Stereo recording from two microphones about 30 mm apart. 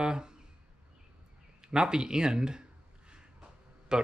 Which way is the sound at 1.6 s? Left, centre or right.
Right.